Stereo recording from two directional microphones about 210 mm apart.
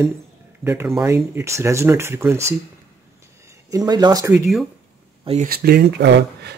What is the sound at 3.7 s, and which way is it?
Speech, 20° right (ahead or behind).